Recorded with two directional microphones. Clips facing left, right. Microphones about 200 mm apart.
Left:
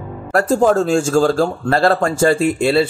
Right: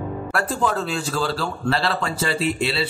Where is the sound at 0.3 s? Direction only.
40° left (ahead or behind).